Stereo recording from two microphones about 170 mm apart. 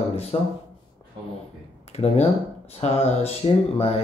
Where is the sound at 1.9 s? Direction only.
40° left (ahead or behind).